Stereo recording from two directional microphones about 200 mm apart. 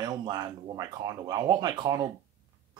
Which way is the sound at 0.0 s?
20° right (ahead or behind).